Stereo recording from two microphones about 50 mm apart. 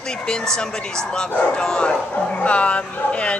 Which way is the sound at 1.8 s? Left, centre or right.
Left.